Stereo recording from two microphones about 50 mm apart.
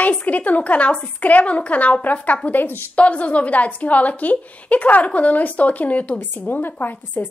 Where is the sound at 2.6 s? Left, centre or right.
Left.